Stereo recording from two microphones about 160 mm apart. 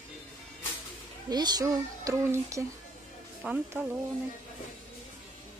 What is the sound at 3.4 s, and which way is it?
Speech, 10° right (ahead or behind).